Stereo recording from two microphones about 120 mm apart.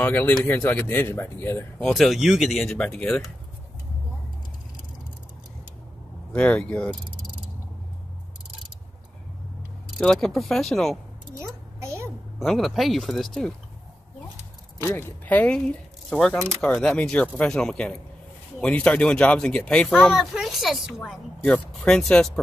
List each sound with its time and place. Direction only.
0.0 s speech: 15° left (ahead or behind)
1.8 s speech: 5° left (ahead or behind)
6.3 s speech: 10° left (ahead or behind)
9.9 s speech: 5° left (ahead or behind)
11.3 s a sound: 25° right (ahead or behind)
12.4 s speech: centre (ahead or behind)
14.9 s speech: 15° left (ahead or behind)
20.1 s speech: centre (ahead or behind)